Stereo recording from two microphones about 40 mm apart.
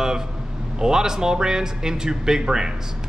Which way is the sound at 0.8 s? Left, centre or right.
Centre.